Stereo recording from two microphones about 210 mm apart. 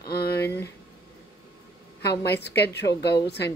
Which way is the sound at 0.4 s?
10° left (ahead or behind).